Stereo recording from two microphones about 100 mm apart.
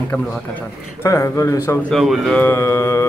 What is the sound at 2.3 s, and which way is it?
Speech, 25° left (ahead or behind).